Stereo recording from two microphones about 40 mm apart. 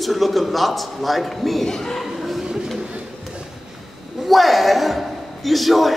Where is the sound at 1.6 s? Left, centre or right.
Centre.